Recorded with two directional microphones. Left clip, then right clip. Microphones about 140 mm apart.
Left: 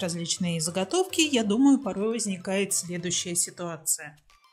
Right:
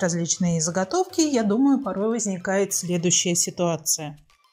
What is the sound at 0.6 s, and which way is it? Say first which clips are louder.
Speech: right 5 dB; 35° left (ahead or behind).